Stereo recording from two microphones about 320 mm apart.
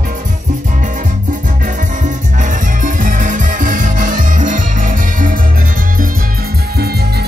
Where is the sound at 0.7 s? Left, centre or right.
Right.